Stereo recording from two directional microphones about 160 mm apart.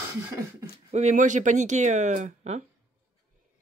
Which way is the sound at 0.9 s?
50° right (ahead or behind).